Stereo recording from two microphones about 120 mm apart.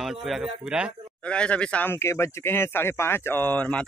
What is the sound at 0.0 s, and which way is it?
Speech, centre (ahead or behind).